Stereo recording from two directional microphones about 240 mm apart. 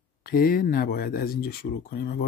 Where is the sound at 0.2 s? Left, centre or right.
Left.